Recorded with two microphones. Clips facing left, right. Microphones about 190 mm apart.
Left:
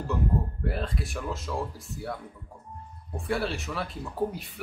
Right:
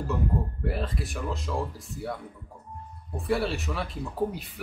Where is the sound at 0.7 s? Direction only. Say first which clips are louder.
Right 1 dB; centre (ahead or behind).